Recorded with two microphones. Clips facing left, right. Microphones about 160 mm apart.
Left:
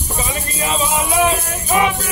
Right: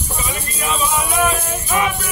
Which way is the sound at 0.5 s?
30° left (ahead or behind).